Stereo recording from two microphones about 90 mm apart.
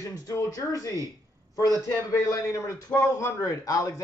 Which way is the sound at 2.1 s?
35° left (ahead or behind).